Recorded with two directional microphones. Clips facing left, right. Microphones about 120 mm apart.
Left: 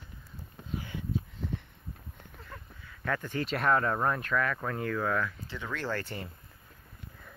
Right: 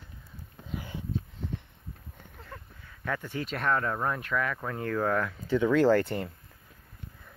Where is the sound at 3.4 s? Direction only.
5° left (ahead or behind).